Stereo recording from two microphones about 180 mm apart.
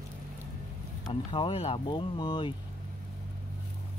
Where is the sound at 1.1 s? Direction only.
30° left (ahead or behind).